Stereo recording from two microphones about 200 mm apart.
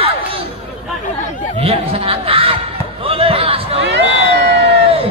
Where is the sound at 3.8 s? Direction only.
60° right (ahead or behind).